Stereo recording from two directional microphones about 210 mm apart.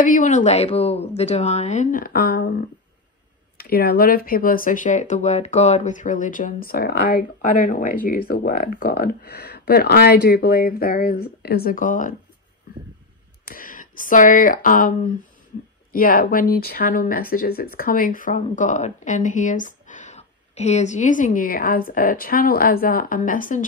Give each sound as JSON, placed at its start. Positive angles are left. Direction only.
{"t": 0.0, "sound": "speech", "side_deg": 40}
{"t": 3.5, "sound": "speech", "side_deg": 45}
{"t": 13.5, "sound": "speech", "side_deg": 40}